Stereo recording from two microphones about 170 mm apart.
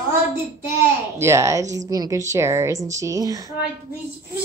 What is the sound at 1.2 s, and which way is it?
A woman's voice, 15° right (ahead or behind).